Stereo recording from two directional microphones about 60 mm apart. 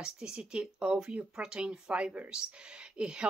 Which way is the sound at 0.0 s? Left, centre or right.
Centre.